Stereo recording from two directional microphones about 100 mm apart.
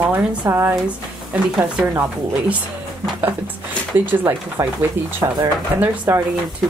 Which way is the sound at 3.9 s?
25° right (ahead or behind).